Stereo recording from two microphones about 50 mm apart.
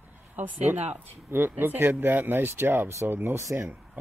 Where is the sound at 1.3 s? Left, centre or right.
Right.